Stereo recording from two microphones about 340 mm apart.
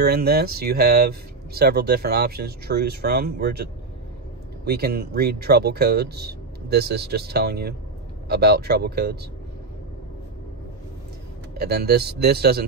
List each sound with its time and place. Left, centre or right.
0.0 s speech: right
4.6 s speech: right
11.5 s speech: right